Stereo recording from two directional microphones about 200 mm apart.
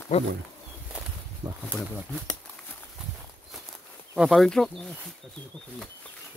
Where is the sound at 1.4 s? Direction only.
20° right (ahead or behind).